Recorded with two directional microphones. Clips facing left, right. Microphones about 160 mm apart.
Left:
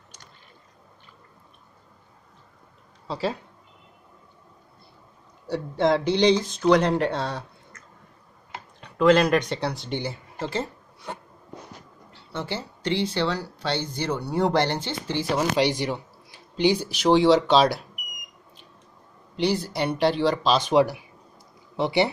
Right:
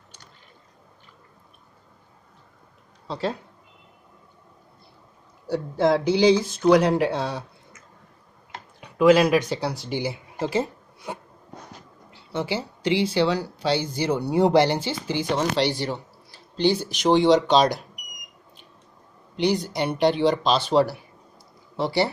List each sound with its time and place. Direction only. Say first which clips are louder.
3.1 s speech: even; centre (ahead or behind)
5.5 s speech: right 1 dB; centre (ahead or behind)
8.8 s speech: right 2 dB; 5° right (ahead or behind)
19.3 s speech: right 1 dB; centre (ahead or behind); by 22.1 s 20° left (ahead or behind)